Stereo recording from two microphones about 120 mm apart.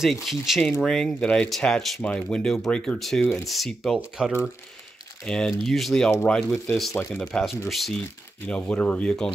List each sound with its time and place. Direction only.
0.0 s speech: centre (ahead or behind)